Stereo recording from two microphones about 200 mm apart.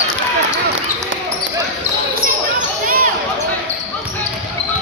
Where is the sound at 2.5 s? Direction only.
45° right (ahead or behind).